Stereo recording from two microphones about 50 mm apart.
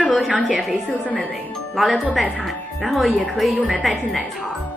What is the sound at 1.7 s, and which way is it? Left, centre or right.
Speech, centre.